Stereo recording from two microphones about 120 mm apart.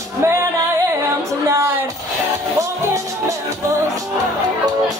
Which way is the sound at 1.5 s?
20° right (ahead or behind).